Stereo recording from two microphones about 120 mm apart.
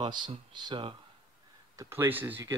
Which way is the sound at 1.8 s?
20° right (ahead or behind).